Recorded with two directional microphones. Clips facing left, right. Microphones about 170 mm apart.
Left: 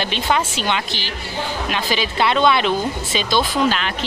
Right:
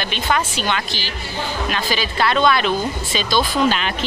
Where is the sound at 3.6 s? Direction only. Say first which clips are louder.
Right 1 dB; 5° right (ahead or behind).